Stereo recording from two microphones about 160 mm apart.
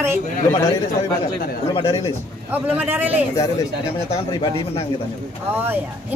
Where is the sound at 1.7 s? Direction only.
40° left (ahead or behind).